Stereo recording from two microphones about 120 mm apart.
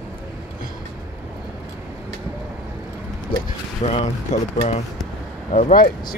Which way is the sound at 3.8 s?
65° left (ahead or behind).